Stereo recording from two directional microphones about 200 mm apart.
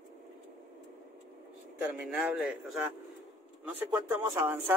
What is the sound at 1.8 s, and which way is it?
Speech, 5° right (ahead or behind).